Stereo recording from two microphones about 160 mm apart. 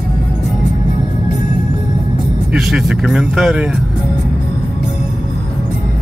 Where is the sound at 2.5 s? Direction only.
5° right (ahead or behind).